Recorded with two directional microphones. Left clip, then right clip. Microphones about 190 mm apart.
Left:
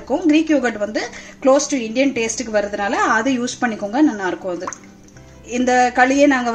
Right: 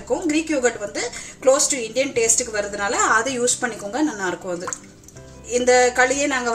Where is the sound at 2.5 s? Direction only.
50° left (ahead or behind).